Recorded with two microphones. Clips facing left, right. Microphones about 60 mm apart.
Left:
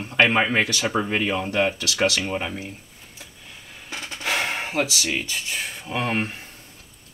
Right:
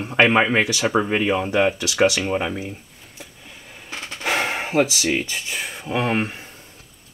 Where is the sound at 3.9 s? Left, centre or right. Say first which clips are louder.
Right 1 dB; right.